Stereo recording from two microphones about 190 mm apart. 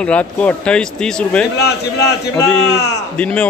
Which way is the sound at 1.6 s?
60° left (ahead or behind).